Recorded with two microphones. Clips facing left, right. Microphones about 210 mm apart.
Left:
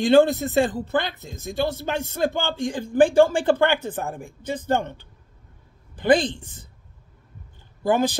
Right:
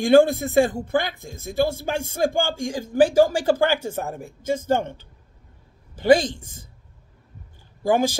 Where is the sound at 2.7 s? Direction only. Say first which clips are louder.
Even; 10° right (ahead or behind).